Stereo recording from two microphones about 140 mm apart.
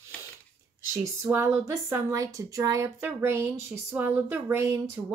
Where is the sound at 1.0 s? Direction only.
20° right (ahead or behind).